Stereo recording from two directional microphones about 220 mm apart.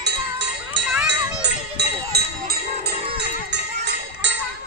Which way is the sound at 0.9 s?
Centre (ahead or behind).